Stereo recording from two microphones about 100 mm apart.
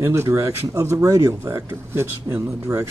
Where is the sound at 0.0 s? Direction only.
25° right (ahead or behind).